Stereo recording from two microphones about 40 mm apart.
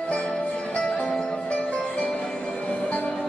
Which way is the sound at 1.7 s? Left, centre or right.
Left.